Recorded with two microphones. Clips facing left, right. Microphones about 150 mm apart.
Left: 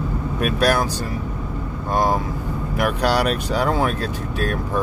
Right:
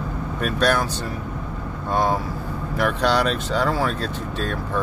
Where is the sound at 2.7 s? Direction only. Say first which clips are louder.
Even; 10° left (ahead or behind).